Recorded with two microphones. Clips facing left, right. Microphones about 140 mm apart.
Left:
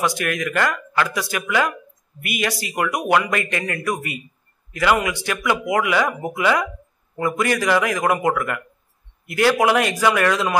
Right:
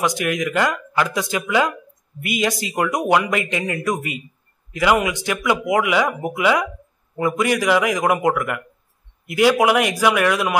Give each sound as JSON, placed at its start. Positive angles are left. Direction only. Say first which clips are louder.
{"t": 0.0, "sound": "speech", "louder": "right 2 dB", "side_deg": -20}